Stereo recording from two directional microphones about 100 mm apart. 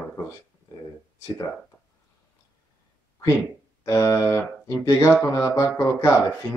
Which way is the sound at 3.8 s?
30° left (ahead or behind).